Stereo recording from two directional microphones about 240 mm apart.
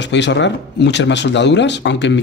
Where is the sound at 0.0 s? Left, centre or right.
Left.